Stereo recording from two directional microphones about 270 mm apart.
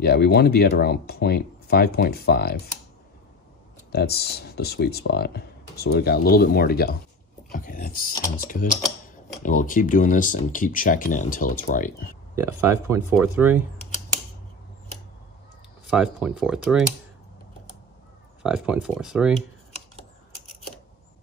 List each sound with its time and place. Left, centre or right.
0.0 s speech: left
3.9 s speech: left
9.4 s speech: left
12.4 s speech: centre
15.9 s speech: centre
18.4 s speech: centre